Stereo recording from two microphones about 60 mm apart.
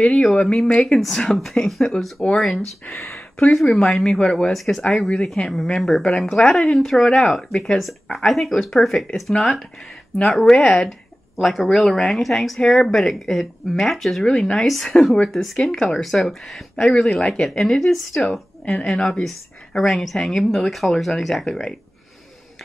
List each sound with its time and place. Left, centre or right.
0.1 s speech: centre
0.7 s speech: centre
3.0 s speech: left
3.5 s speech: centre
10.6 s speech: centre
10.9 s speech: centre
18.8 s speech: centre